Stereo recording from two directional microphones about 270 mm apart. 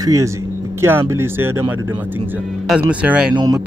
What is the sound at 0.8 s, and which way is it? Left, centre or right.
Speech, centre.